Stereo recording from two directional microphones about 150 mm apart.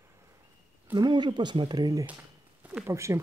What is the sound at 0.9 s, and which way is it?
Speech, 30° right (ahead or behind).